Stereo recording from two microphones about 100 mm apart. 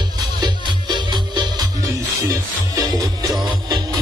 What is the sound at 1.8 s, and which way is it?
Music, 35° right (ahead or behind).